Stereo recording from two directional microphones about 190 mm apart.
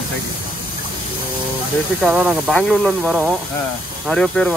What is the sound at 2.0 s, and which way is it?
Speech, 5° right (ahead or behind).